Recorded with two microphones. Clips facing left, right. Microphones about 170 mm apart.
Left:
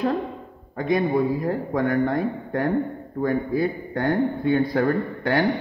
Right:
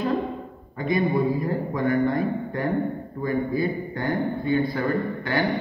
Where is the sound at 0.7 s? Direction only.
80° left.